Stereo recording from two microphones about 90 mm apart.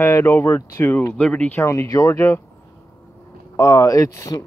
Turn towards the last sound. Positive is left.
turn(degrees=40)  # may be behind; listen again after turning